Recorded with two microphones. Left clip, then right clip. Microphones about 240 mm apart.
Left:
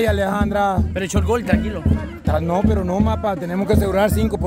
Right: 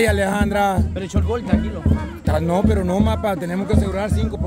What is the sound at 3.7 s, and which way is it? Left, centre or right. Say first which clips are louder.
Speech: left 7 dB; left.